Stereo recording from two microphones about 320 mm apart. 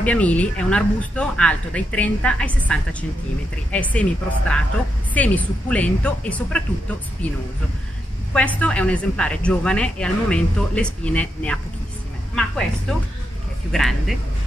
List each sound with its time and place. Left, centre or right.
0.0 s speech: centre
8.3 s speech: centre
13.7 s speech: centre